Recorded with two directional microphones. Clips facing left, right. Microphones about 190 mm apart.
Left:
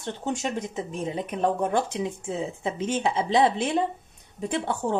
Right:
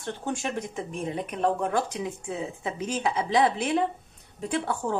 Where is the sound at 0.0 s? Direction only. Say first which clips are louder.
Left 2 dB; 20° left (ahead or behind).